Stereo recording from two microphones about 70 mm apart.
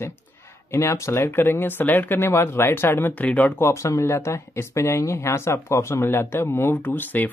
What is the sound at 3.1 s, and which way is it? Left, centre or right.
Speech, left.